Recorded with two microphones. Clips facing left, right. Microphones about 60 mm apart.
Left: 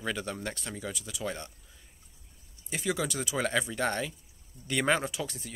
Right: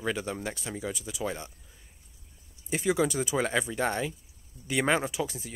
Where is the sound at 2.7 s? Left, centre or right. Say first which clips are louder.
Right 5 dB; centre.